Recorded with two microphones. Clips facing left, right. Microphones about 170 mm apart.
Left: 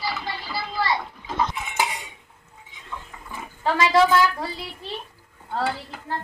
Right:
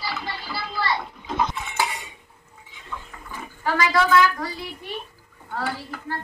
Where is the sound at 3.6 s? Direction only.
25° left (ahead or behind).